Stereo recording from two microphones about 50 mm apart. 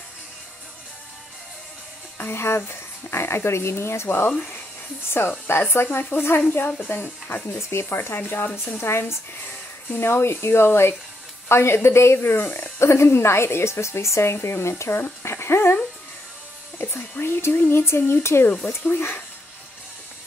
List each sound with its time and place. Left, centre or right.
2.1 s a woman's voice: left
5.6 s speech: left
7.5 s speech: left
8.2 s speech: left
8.8 s a woman's voice: left
15.2 s dog: left
16.7 s speech: left